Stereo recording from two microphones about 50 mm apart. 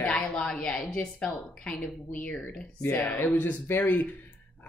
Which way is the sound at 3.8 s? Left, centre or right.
Left.